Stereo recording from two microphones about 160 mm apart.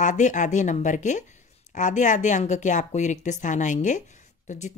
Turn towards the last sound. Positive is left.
turn(degrees=45)  # may be behind; listen again after turning